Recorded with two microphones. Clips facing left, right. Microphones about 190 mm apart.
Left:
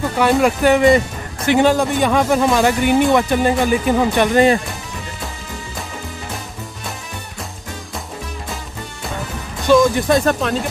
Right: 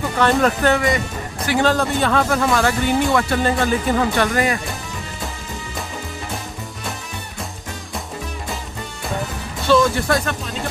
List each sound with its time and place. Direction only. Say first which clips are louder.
0.2 s speech: left 2 dB; 10° left (ahead or behind)
0.9 s speech: left 6 dB; 20° left (ahead or behind)
9.7 s speech: left 3 dB; 20° left (ahead or behind)